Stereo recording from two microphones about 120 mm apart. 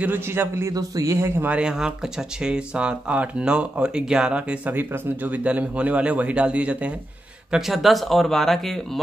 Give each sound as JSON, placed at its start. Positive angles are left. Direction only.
{"t": 0.0, "sound": "a man's voice", "side_deg": -20}
{"t": 1.5, "sound": "speech", "side_deg": -5}